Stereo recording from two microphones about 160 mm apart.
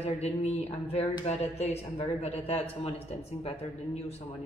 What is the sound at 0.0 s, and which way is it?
A woman's voice, 40° left (ahead or behind).